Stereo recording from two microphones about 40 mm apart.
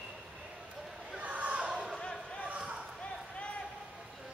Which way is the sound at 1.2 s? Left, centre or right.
Right.